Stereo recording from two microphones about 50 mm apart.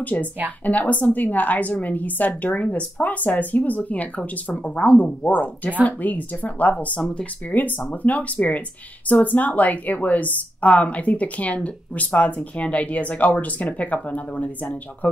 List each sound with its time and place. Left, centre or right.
0.0 s a woman's voice: left